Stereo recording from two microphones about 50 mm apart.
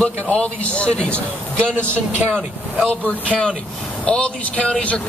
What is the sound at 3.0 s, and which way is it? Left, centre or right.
A man's voice, left.